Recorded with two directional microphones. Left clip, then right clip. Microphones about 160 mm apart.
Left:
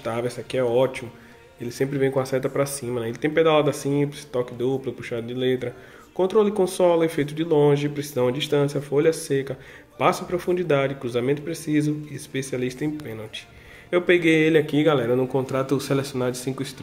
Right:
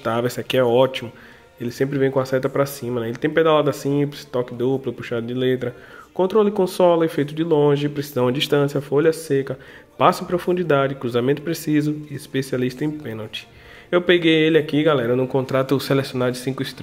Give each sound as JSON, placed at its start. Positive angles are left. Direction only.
{"t": 0.0, "sound": "speech", "side_deg": -30}
{"t": 1.6, "sound": "speech", "side_deg": -20}